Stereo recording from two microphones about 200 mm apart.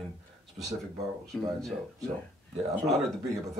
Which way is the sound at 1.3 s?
5° left (ahead or behind).